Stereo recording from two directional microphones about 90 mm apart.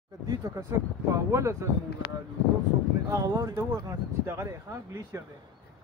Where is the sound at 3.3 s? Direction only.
40° right (ahead or behind).